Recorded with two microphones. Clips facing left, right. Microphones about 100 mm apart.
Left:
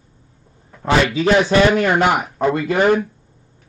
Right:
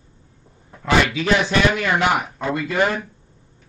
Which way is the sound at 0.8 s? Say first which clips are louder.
Left 3 dB; 35° left (ahead or behind).